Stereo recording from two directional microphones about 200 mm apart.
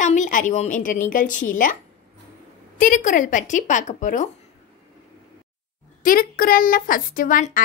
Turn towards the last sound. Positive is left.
turn(degrees=40)  # may be behind; listen again after turning